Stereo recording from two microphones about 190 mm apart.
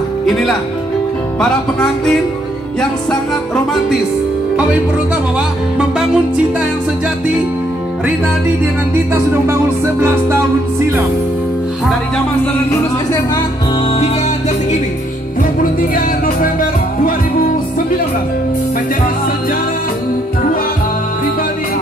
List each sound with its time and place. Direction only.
0.3 s music: centre (ahead or behind)
5.8 s music: 5° right (ahead or behind)
9.5 s music: 15° right (ahead or behind)
15.9 s music: 50° left (ahead or behind)